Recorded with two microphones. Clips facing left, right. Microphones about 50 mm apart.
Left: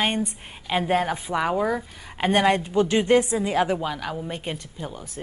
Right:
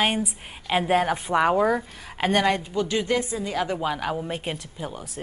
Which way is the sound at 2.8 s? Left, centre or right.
Left.